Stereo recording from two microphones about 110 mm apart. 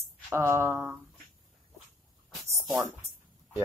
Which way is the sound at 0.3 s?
25° right (ahead or behind).